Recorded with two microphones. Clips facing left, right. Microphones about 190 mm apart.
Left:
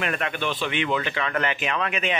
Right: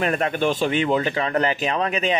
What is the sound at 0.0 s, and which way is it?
Speech, 40° right (ahead or behind).